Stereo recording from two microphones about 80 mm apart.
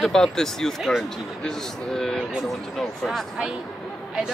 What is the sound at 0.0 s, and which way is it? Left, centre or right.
Speech, centre.